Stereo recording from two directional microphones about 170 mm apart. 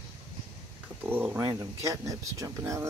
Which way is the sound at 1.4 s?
20° right (ahead or behind).